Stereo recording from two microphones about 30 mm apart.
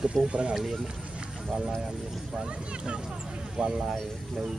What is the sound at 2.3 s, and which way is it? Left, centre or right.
Speech, right.